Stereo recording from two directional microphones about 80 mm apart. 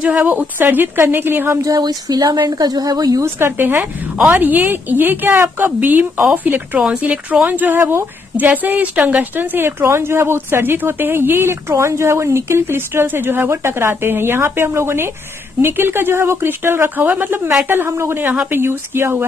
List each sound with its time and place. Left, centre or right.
0.0 s a woman's voice: centre
1.6 s speech: right
3.2 s a woman's voice: right